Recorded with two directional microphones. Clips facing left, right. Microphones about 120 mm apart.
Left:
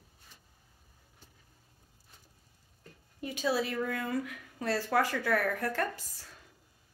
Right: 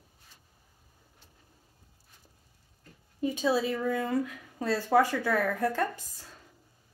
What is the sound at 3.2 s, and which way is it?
Speech, 20° right (ahead or behind).